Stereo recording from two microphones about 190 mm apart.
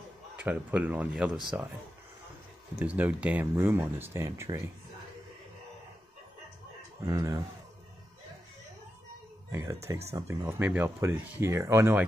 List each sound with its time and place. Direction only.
0.4 s speech: 10° right (ahead or behind)
2.8 s speech: 10° right (ahead or behind)
7.1 s speech: 20° right (ahead or behind)
9.5 s speech: 15° right (ahead or behind)